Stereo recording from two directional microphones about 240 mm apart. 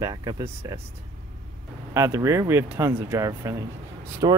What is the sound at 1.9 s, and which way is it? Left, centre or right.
Speech, centre.